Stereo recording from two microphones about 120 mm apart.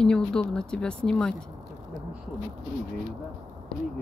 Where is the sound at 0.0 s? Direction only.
5° left (ahead or behind).